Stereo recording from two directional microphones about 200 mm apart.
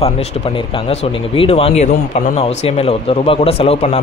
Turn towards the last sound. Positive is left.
turn(degrees=30)  # may be behind; listen again after turning